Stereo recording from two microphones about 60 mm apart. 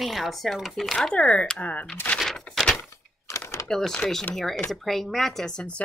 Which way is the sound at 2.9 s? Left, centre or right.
Left.